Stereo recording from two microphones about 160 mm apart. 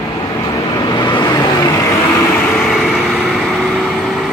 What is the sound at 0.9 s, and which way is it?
Vehicle, 25° left (ahead or behind).